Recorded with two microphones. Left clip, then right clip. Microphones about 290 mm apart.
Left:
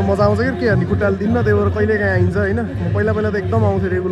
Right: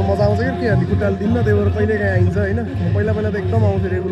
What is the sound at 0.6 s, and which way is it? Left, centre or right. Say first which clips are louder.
A man's voice: left 2 dB; centre.